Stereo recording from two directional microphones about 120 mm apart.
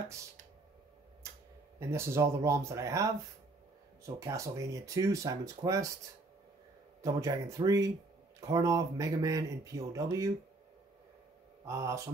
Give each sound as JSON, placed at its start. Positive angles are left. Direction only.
{"t": 1.2, "sound": "tick-tock", "side_deg": -25}
{"t": 1.8, "sound": "speech", "side_deg": -20}
{"t": 7.0, "sound": "speech", "side_deg": -25}
{"t": 11.6, "sound": "speech", "side_deg": -25}